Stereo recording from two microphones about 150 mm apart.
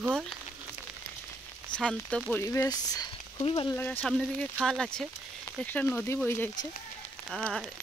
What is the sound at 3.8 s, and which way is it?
Speech, 15° left (ahead or behind).